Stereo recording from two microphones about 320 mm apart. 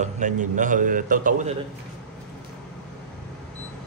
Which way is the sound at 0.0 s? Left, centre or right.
Right.